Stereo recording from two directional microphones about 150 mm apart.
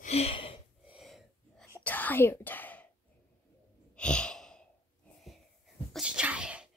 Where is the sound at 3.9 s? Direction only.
5° left (ahead or behind).